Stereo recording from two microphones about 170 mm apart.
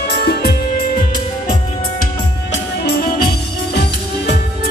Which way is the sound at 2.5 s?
75° left (ahead or behind).